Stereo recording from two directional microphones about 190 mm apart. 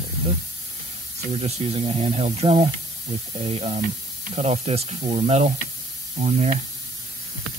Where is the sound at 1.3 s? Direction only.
35° right (ahead or behind).